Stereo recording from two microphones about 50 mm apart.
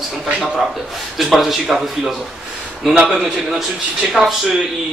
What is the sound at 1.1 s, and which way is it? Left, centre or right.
Speech, centre.